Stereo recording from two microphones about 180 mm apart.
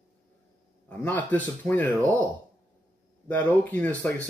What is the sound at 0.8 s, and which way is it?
Speech, 10° left (ahead or behind).